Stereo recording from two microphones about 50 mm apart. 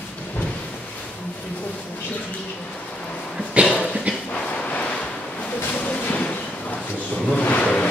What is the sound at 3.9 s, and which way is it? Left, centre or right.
Dog, centre.